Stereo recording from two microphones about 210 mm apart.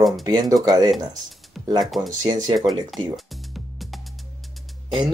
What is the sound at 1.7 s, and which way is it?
Speech, centre (ahead or behind).